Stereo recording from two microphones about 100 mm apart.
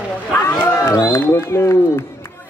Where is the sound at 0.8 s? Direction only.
30° left (ahead or behind).